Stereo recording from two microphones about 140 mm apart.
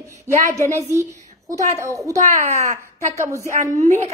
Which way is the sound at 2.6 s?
60° right (ahead or behind).